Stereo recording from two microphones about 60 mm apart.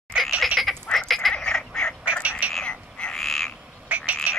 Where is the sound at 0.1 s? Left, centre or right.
Centre.